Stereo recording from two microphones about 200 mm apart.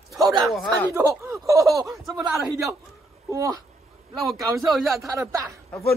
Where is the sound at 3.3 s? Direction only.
15° right (ahead or behind).